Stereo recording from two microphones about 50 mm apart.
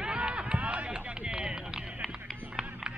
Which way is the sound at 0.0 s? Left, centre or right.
Right.